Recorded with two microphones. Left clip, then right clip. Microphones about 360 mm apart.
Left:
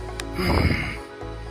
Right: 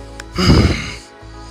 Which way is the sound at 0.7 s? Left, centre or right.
Centre.